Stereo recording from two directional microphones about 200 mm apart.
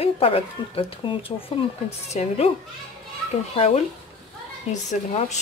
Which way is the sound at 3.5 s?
30° left (ahead or behind).